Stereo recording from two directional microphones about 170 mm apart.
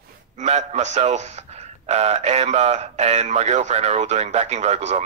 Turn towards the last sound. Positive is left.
turn(degrees=-40)  # may be behind; listen again after turning